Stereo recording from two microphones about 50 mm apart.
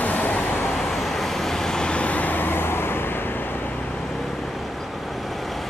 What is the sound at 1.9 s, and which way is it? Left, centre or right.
Vehicle, left.